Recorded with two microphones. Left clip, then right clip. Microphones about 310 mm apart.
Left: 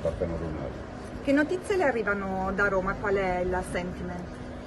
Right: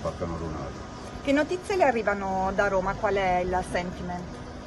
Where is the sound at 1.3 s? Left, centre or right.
Right.